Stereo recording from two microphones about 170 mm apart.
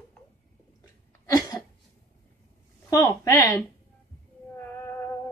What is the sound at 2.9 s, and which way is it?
Speech, 20° left (ahead or behind).